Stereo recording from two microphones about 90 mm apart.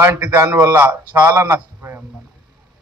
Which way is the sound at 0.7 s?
20° right (ahead or behind).